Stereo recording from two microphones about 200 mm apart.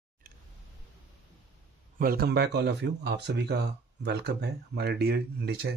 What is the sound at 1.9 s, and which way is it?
Speech, 50° right (ahead or behind).